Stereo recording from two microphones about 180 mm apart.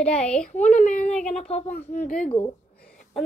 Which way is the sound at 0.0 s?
5° left (ahead or behind).